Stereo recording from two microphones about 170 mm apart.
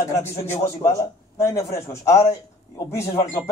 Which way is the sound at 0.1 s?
15° left (ahead or behind).